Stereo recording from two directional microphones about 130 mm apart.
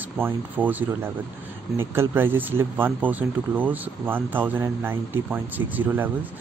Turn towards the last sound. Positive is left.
turn(degrees=-15)  # may be behind; listen again after turning